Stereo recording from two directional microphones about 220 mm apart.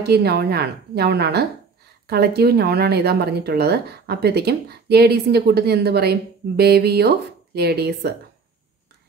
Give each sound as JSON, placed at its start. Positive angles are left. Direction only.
{"t": 0.0, "sound": "speech", "side_deg": -45}